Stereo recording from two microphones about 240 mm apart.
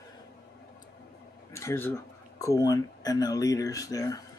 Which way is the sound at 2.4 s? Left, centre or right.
Centre.